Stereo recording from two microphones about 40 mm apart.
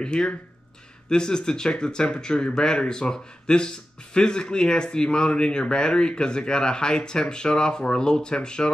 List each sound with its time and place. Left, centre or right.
0.0 s speech: left